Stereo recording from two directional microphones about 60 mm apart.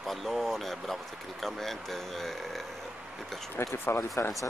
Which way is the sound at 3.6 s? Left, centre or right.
Left.